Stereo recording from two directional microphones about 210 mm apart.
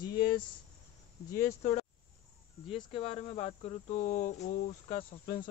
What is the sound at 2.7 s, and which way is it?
Speech, 25° left (ahead or behind).